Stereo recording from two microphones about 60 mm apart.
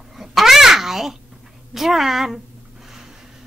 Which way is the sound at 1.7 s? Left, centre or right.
Centre.